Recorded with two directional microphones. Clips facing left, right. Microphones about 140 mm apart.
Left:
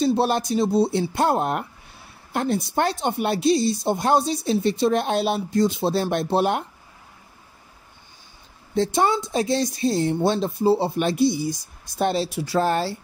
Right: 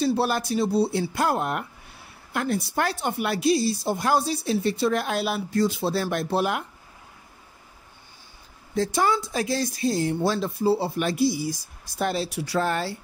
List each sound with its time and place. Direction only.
0.0 s speech: 25° left (ahead or behind)
8.7 s speech: 25° left (ahead or behind)